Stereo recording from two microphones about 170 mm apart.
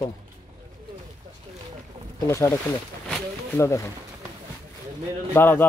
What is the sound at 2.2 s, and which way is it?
A man's voice, 15° left (ahead or behind).